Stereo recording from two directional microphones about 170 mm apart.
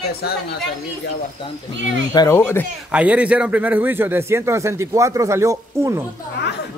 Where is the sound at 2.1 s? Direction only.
15° left (ahead or behind).